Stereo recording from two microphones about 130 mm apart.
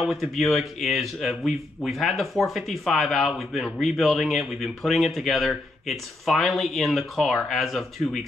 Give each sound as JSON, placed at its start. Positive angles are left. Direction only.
{"t": 0.0, "sound": "speech", "side_deg": 0}